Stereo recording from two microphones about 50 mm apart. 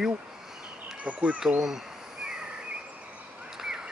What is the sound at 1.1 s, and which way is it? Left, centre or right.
Speech, right.